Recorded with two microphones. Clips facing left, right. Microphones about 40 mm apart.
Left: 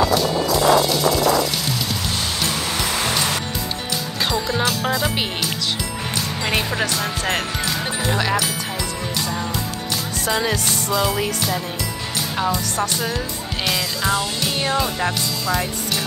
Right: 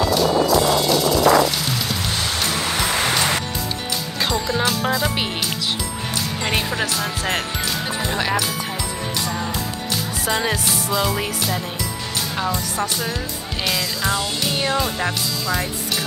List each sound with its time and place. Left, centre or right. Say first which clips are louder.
0.1 s music: right 2 dB; centre
2.1 s music: right 1 dB; centre
4.2 s speech: even; centre
6.4 s music: left 1 dB; centre
10.2 s music: left 1 dB; centre